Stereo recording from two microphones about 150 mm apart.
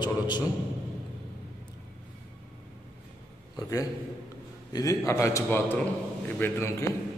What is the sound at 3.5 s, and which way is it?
A man's voice, 20° left (ahead or behind).